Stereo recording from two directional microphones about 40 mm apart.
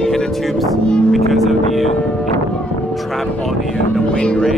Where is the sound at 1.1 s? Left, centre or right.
Centre.